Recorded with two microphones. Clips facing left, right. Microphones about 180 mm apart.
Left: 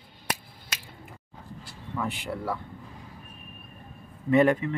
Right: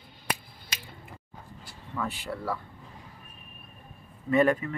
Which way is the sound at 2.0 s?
15° left (ahead or behind).